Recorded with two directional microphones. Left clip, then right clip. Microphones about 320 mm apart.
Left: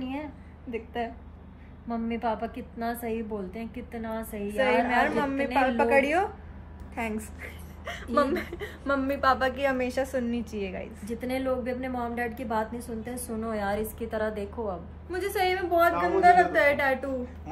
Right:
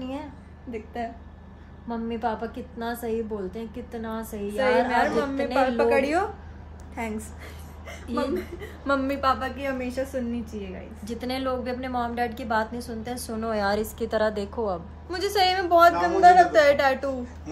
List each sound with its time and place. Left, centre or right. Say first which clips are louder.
1.9 s a woman's voice: right 1 dB; centre
4.6 s a woman's voice: right 2 dB; centre
7.8 s a woman's voice: left 4 dB; centre
8.8 s a woman's voice: right 1 dB; centre
9.4 s a woman's voice: left 3 dB; centre
11.1 s a woman's voice: right 1 dB; centre
13.4 s a woman's voice: right 5 dB; right
15.0 s a woman's voice: right 4 dB; centre